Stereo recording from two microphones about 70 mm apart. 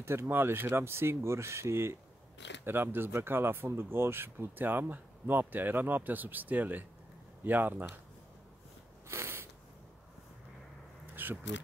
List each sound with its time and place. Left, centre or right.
0.0 s speech: right
9.1 s a sound: right
11.2 s vehicle: right